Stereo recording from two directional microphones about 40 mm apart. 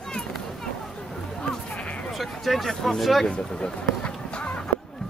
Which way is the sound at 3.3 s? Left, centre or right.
Left.